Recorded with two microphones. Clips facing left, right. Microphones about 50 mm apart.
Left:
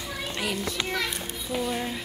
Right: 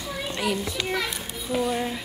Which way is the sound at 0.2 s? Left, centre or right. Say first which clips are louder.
Right 3 dB; centre.